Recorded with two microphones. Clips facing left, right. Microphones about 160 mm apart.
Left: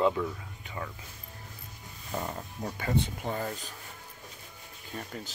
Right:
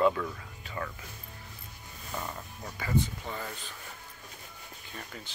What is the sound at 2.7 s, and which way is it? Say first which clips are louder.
Speech: right 1 dB; 55° left (ahead or behind).